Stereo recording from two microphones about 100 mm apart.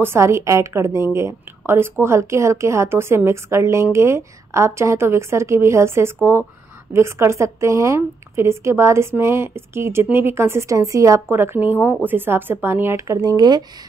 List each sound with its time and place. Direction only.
0.0 s a woman's voice: 25° right (ahead or behind); by 13.7 s 45° right (ahead or behind)